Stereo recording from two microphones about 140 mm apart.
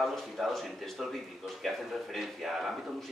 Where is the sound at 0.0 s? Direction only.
Centre (ahead or behind).